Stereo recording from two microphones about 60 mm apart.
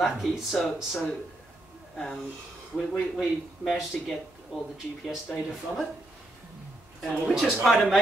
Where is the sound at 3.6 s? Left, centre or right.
Centre.